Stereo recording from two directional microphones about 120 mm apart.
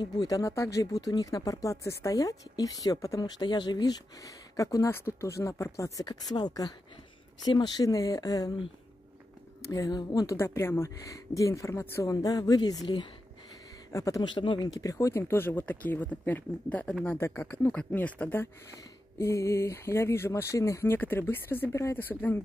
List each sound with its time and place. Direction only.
0.0 s speech: 30° left (ahead or behind)
6.3 s speech: 35° left (ahead or behind)
9.7 s speech: 35° left (ahead or behind)
10.3 s speech: 20° left (ahead or behind)
14.2 s speech: 40° left (ahead or behind)
14.7 s speech: 25° left (ahead or behind)